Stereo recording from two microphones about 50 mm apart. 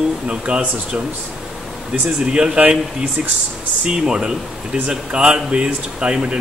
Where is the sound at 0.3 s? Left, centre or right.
Right.